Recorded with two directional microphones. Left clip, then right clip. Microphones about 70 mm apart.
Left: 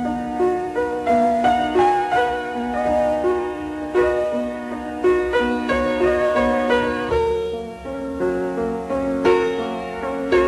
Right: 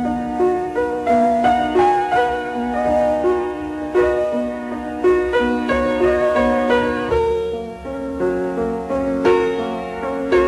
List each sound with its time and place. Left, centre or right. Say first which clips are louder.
0.0 s music: right 2 dB; centre
5.7 s music: right 2 dB; left
6.5 s music: right 2 dB; centre; by 8.6 s left
8.9 s music: right 1 dB; centre